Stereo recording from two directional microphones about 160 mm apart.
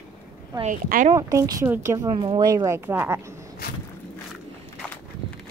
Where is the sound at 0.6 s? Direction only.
55° right (ahead or behind).